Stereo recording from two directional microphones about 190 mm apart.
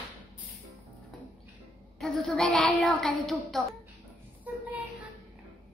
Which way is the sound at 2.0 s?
5° left (ahead or behind).